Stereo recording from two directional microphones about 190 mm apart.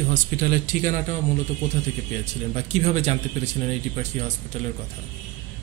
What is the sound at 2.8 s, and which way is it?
Speech, 35° right (ahead or behind).